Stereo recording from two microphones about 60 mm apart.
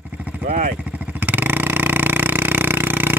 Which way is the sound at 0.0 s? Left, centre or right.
Right.